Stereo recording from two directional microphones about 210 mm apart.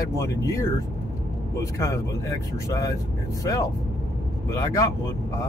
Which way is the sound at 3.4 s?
15° left (ahead or behind).